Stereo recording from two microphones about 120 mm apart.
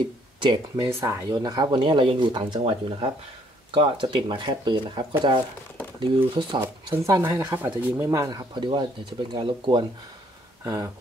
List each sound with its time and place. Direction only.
0.4 s speech: 40° right (ahead or behind)
0.8 s speech: 25° right (ahead or behind)
1.3 s speech: 35° right (ahead or behind)
6.6 s speech: 20° right (ahead or behind)
8.1 s speech: 30° right (ahead or behind)
8.5 s speech: 40° right (ahead or behind)
10.6 s speech: 25° right (ahead or behind)